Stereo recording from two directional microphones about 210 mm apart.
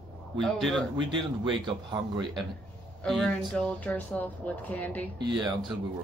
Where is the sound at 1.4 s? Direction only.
20° right (ahead or behind).